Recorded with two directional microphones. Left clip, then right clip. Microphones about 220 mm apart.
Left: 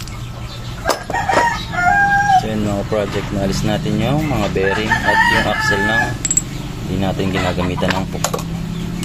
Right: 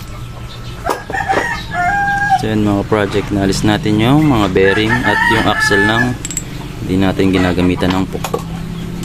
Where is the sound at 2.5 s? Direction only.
45° right (ahead or behind).